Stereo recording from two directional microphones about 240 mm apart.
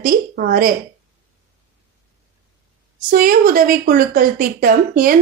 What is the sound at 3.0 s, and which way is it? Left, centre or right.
A woman's voice, right.